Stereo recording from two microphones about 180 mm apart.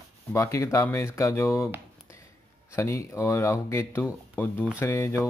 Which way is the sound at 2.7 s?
15° left (ahead or behind).